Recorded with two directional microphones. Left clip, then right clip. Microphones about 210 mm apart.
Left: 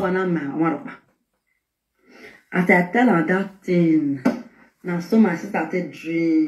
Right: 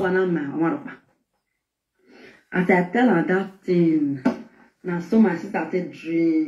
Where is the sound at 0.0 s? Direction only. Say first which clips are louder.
Right 1 dB; 40° left (ahead or behind).